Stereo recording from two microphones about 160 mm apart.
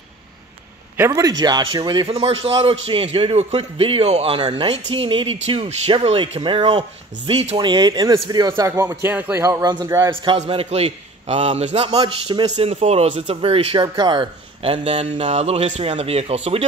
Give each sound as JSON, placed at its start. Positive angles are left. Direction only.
{"t": 0.9, "sound": "a man's voice", "side_deg": -20}
{"t": 10.4, "sound": "a man's voice", "side_deg": -40}
{"t": 12.5, "sound": "a man's voice", "side_deg": -45}